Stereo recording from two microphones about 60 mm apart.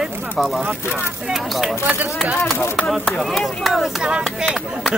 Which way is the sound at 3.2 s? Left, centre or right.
Centre.